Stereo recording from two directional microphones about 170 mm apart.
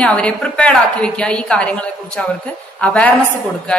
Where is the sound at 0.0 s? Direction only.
5° left (ahead or behind).